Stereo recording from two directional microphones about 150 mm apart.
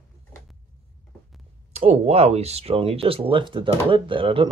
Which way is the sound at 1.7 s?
45° right (ahead or behind).